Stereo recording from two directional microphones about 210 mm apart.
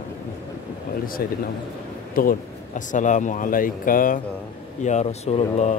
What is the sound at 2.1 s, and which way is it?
Speech, 40° left (ahead or behind).